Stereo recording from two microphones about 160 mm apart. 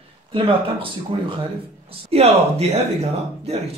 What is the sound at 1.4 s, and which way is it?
Speech, 35° right (ahead or behind).